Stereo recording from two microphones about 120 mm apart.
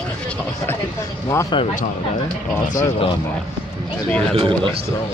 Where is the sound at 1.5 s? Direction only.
40° left (ahead or behind).